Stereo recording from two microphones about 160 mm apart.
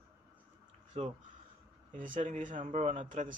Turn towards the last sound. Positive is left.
turn(degrees=-50)  # may be behind; listen again after turning